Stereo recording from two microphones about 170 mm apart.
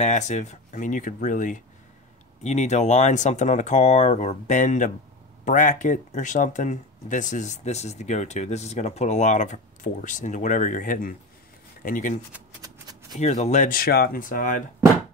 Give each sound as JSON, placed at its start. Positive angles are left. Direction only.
{"t": 0.0, "sound": "speech", "side_deg": 45}
{"t": 13.2, "sound": "speech", "side_deg": 45}